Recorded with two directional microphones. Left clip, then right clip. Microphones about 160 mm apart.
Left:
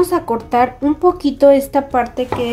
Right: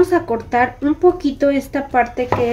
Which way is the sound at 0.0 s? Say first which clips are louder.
Even; 30° left (ahead or behind).